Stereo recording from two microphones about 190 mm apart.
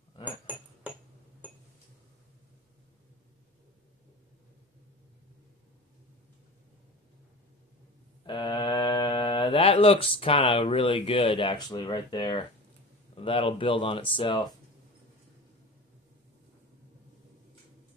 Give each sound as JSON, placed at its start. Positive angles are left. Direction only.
{"t": 0.2, "sound": "glass", "side_deg": -10}
{"t": 8.3, "sound": "speech", "side_deg": 25}